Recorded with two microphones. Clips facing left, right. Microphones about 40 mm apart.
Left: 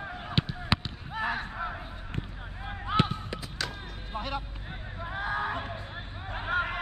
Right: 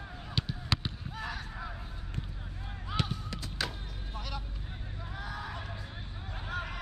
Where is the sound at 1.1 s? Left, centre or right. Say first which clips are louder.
Left 12 dB; left.